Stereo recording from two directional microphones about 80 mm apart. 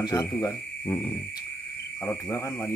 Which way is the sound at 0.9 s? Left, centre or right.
Left.